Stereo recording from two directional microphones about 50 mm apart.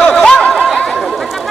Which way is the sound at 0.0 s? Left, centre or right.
Centre.